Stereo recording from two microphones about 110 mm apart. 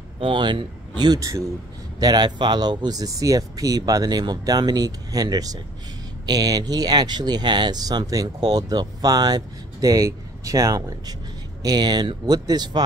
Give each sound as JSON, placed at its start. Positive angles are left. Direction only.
{"t": 0.2, "sound": "speech", "side_deg": -45}